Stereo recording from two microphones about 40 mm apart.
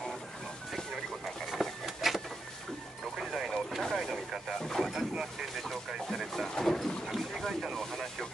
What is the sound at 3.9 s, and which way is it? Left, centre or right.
Vehicle, centre.